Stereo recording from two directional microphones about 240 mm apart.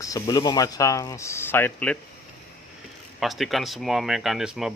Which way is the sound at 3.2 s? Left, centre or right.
Centre.